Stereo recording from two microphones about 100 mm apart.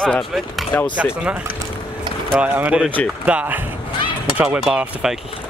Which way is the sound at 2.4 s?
15° right (ahead or behind).